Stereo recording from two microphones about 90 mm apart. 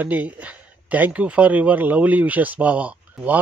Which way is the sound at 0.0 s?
15° right (ahead or behind).